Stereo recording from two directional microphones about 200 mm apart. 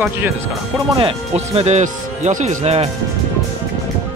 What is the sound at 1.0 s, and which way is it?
Speech, 30° right (ahead or behind).